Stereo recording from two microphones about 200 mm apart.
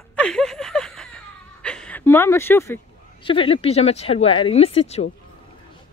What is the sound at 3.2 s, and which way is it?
Speech, 25° left (ahead or behind).